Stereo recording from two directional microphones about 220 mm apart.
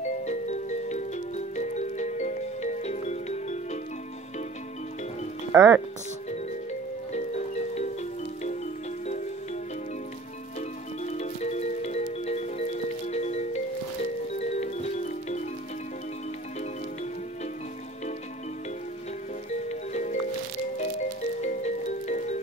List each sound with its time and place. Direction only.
0.3 s music: 30° left (ahead or behind)
5.5 s speech: 10° right (ahead or behind)
6.3 s music: 30° left (ahead or behind)
11.1 s music: 30° left (ahead or behind)
19.7 s music: 30° left (ahead or behind)